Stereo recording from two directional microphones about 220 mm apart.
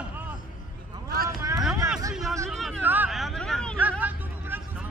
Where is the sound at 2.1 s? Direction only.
Centre (ahead or behind).